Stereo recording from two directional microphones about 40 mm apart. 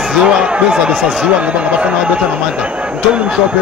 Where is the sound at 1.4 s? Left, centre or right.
Right.